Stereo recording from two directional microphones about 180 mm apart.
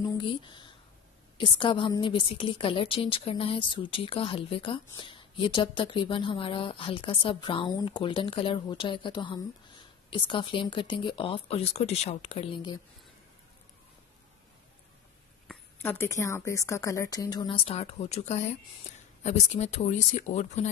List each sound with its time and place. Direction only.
0.0 s a woman's voice: 25° left (ahead or behind)
15.4 s a woman's voice: 10° left (ahead or behind); by 20.7 s 40° left (ahead or behind)